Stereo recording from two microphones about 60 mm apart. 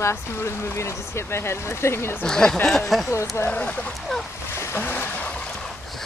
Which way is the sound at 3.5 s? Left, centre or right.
Left.